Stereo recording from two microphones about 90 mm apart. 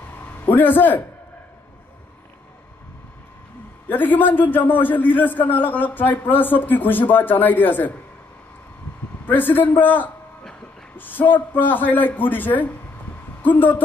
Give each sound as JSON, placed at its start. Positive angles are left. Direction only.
{"t": 0.2, "sound": "a sound", "side_deg": 20}
{"t": 3.9, "sound": "a man's voice", "side_deg": 20}
{"t": 9.2, "sound": "a man's voice", "side_deg": 20}